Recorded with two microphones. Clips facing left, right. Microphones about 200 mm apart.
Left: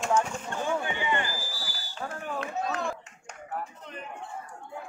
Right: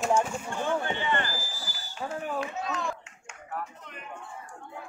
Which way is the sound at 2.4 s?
60° left (ahead or behind).